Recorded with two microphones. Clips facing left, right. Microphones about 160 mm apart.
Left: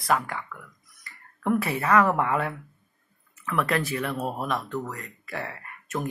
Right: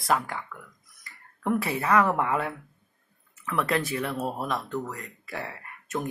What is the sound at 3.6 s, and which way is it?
Speech, 25° right (ahead or behind).